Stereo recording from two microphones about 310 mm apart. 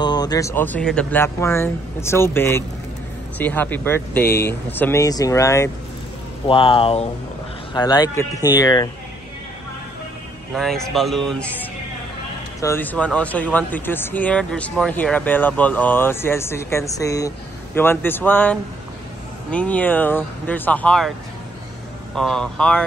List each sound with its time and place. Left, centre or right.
0.0 s speech: centre
10.5 s speech: centre
12.5 s speech: centre
22.1 s speech: centre